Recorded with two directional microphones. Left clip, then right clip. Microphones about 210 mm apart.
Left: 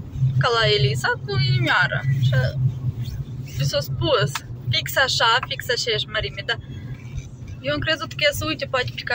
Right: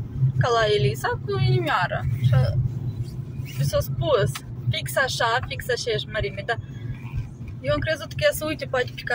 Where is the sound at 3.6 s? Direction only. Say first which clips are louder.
Left 1 dB; 15° right (ahead or behind).